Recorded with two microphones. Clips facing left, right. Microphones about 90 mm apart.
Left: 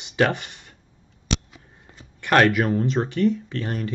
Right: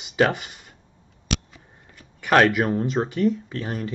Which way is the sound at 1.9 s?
20° left (ahead or behind).